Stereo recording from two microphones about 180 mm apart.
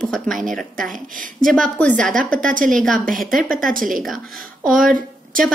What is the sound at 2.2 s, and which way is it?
Speech, 50° right (ahead or behind).